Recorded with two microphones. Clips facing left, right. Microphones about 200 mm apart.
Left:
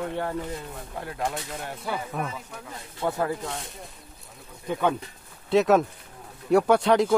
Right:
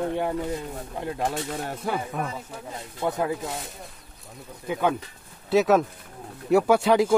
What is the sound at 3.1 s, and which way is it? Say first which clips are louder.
Speech: right 1 dB; 15° right (ahead or behind).